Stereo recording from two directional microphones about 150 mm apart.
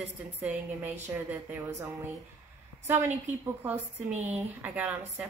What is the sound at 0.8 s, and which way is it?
A woman's voice, 15° right (ahead or behind).